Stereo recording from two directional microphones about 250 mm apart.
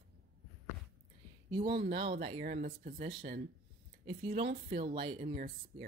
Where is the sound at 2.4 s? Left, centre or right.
Right.